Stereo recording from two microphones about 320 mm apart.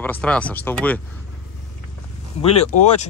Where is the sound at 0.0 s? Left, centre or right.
Centre.